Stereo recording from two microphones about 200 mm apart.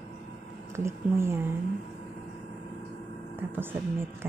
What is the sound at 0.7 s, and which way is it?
Speech, 15° right (ahead or behind).